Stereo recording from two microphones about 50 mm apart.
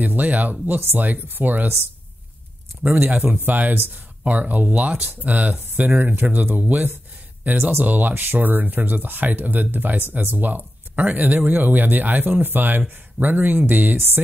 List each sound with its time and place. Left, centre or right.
0.0 s speech: right
2.8 s speech: right
13.9 s a sound: right